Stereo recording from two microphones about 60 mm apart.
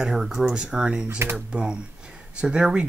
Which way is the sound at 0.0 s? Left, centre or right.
Centre.